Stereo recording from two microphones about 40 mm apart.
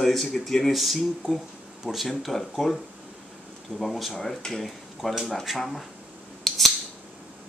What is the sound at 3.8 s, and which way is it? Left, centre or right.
Speech, centre.